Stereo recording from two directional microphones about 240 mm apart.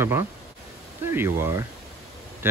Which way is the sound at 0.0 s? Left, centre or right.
Centre.